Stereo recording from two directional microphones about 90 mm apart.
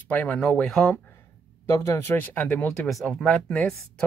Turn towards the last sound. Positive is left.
turn(degrees=10)  # may be behind; listen again after turning